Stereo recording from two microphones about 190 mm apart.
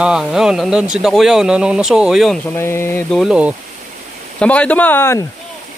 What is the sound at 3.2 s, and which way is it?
Speech, 5° right (ahead or behind).